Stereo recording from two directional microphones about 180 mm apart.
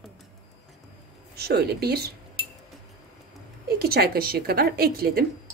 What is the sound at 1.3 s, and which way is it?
Speech, 65° right (ahead or behind).